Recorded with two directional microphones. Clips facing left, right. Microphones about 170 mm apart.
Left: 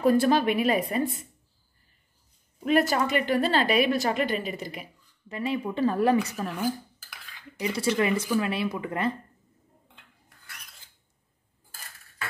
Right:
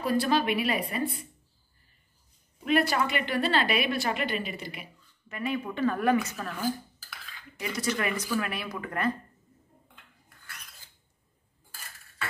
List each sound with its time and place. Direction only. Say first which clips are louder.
0.0 s a woman's voice: left 5 dB; 50° left (ahead or behind)
2.6 s a woman's voice: left 2 dB; 40° left (ahead or behind)
6.4 s speech: left 4 dB; 20° left (ahead or behind)
7.7 s speech: left 5 dB; 30° left (ahead or behind)